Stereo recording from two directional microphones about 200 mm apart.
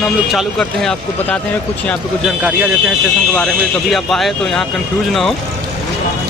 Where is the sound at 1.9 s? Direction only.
5° right (ahead or behind).